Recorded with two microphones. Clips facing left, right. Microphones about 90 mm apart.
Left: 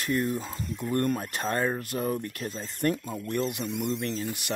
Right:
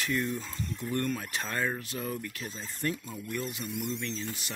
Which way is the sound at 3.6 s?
Centre (ahead or behind).